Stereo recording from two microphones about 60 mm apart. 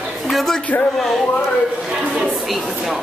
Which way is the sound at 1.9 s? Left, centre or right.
Centre.